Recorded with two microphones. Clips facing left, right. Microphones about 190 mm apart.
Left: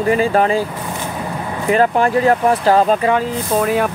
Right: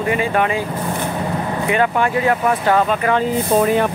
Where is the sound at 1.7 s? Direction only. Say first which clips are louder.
Left 4 dB; 35° left (ahead or behind).